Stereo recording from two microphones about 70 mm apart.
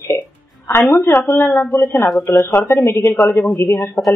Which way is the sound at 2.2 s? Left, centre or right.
Left.